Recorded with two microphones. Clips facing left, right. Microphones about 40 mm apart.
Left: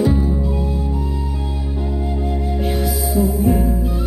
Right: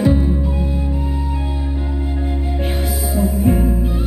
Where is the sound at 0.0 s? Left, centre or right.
Right.